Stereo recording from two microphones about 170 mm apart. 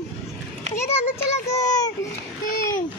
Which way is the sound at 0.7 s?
15° left (ahead or behind).